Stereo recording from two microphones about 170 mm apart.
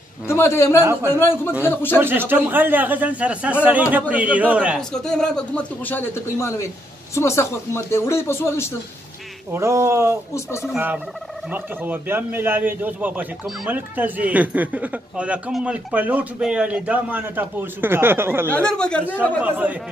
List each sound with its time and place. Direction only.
0.3 s speech: 15° left (ahead or behind)
0.7 s a man's voice: 15° right (ahead or behind)
1.1 s speech: 15° left (ahead or behind)
2.0 s a man's voice: 10° right (ahead or behind)
4.7 s speech: 5° left (ahead or behind)
9.5 s a man's voice: 15° right (ahead or behind)
18.5 s speech: 5° left (ahead or behind)
19.4 s a man's voice: 10° right (ahead or behind)